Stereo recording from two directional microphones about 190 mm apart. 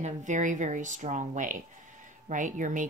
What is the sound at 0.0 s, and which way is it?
Speech, 40° right (ahead or behind).